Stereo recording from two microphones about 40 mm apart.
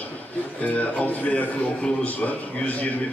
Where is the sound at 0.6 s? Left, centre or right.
Left.